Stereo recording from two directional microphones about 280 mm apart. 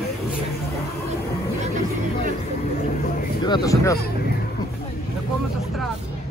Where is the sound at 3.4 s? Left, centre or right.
Centre.